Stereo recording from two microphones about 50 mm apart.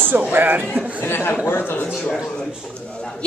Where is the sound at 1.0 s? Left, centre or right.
Left.